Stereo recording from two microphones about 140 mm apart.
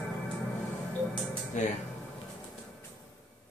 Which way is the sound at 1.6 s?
60° left (ahead or behind).